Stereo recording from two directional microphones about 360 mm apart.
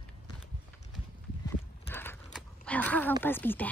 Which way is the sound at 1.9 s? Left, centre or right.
Centre.